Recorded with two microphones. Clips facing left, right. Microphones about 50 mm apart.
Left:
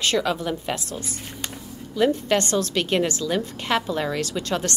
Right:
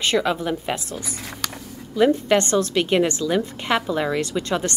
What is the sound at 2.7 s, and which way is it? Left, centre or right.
A woman's voice, centre.